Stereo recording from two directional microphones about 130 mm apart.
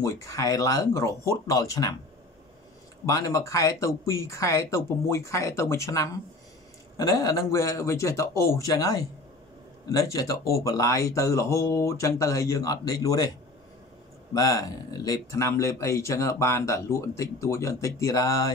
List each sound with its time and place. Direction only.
0.0 s speech: 25° left (ahead or behind)
3.1 s speech: 25° left (ahead or behind)
14.3 s speech: 25° left (ahead or behind)